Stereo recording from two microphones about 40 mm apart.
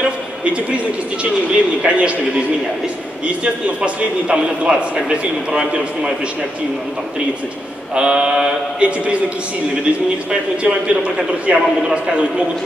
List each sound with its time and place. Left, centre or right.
0.0 s a sound: right
1.5 s a man's voice: right
3.8 s a man's voice: right
7.9 s a man's voice: right
10.6 s a man's voice: right